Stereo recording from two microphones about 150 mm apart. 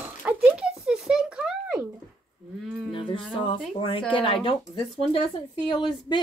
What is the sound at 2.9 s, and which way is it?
Music, 35° left (ahead or behind).